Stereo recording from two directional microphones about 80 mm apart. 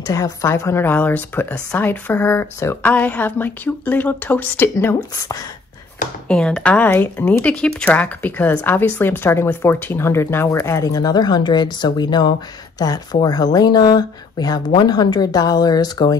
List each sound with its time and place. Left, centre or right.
0.0 s a woman's voice: left
2.8 s a woman's voice: left
6.2 s a woman's voice: centre; by 12.3 s left
12.7 s speech: left